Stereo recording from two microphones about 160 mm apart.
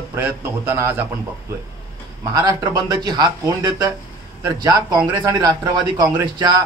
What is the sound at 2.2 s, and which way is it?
A man's voice, 25° right (ahead or behind).